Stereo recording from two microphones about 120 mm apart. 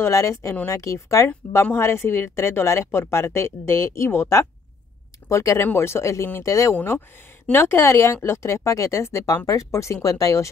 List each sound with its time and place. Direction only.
0.0 s a woman's voice: 25° left (ahead or behind)